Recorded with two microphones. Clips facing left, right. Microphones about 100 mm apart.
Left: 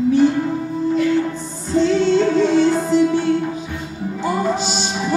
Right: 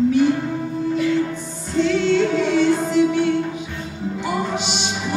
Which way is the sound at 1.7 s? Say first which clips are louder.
Left 2 dB; 35° left (ahead or behind).